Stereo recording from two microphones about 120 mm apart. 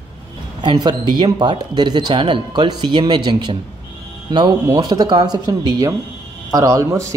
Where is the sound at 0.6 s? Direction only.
40° right (ahead or behind).